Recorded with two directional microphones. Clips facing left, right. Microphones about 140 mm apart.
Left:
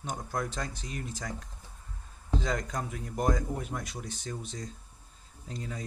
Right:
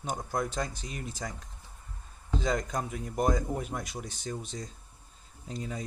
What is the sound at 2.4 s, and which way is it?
Speech, 15° right (ahead or behind).